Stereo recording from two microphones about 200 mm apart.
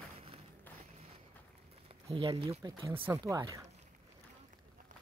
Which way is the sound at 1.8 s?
25° right (ahead or behind).